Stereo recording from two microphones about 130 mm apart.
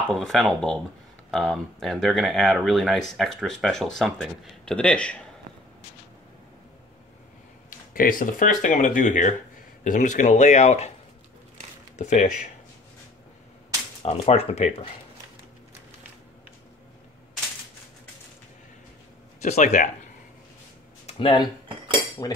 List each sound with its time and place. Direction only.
0.1 s speech: 5° left (ahead or behind)
7.9 s speech: 90° left; by 10.9 s 60° left (ahead or behind)
12.0 s speech: 65° left (ahead or behind)
14.0 s speech: 50° left (ahead or behind)
19.4 s speech: 65° left (ahead or behind)
21.1 s speech: 45° left (ahead or behind)
22.2 s cutlery: 25° left (ahead or behind)